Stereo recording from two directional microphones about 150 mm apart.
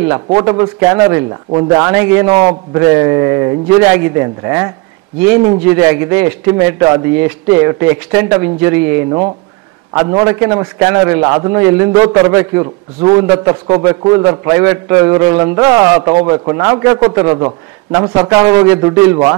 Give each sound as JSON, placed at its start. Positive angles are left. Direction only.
{"t": 0.3, "sound": "a man's voice", "side_deg": -25}